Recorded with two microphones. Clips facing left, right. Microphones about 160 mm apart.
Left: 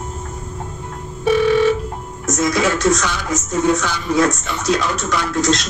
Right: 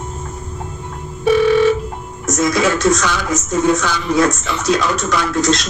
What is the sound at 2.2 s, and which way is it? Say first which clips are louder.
Speech: right 2 dB; 90° right.